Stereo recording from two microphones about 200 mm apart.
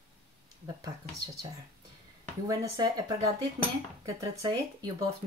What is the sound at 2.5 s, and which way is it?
Speech, 20° right (ahead or behind).